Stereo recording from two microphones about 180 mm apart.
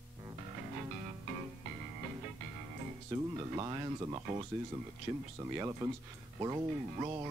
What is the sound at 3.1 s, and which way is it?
Speech, 20° right (ahead or behind).